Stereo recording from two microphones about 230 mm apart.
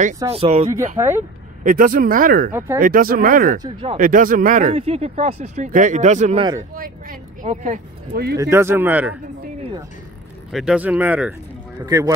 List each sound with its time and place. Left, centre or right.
0.3 s speech: right
0.9 s speech: centre
1.6 s speech: right
8.4 s speech: centre
9.6 s zipper: right
10.5 s speech: centre